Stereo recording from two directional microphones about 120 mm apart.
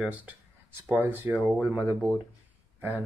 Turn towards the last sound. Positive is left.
turn(degrees=-15)  # may be behind; listen again after turning